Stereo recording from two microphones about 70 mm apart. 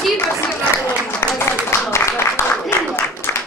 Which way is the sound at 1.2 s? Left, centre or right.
Left.